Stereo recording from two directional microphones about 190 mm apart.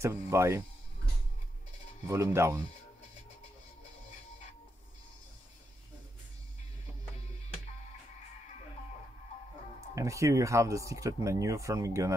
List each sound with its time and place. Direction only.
0.0 s speech: 15° right (ahead or behind)
2.0 s speech: 15° right (ahead or behind)
9.9 s speech: 15° right (ahead or behind)